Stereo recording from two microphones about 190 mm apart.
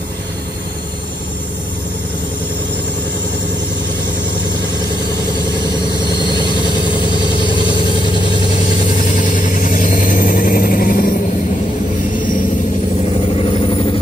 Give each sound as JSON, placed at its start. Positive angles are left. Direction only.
{"t": 5.6, "sound": "vehicle", "side_deg": 25}
{"t": 8.5, "sound": "vehicle", "side_deg": 40}
{"t": 13.0, "sound": "vehicle", "side_deg": 30}